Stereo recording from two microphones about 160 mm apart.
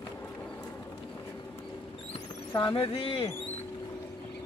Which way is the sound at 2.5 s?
35° left (ahead or behind).